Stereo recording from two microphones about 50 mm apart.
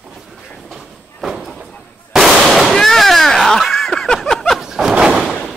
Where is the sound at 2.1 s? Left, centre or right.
Centre.